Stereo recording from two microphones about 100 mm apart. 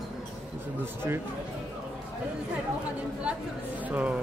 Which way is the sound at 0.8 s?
25° right (ahead or behind).